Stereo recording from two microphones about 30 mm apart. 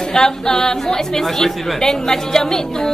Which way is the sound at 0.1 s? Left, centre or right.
Left.